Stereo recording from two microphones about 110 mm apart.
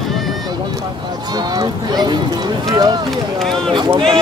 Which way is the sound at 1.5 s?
40° right (ahead or behind).